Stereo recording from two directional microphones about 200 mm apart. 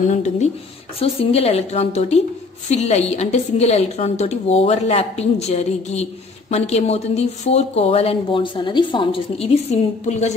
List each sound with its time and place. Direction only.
0.1 s speech: 35° left (ahead or behind)